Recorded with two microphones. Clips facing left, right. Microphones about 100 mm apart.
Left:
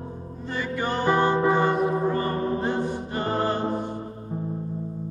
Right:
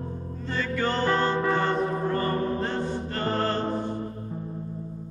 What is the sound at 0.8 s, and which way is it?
Music, 15° left (ahead or behind).